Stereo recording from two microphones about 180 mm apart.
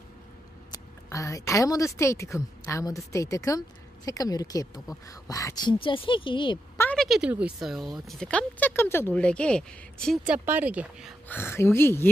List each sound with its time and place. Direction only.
1.1 s speech: 15° left (ahead or behind)
6.8 s speech: 5° left (ahead or behind)
10.2 s speech: 10° right (ahead or behind)
11.2 s speech: 10° left (ahead or behind)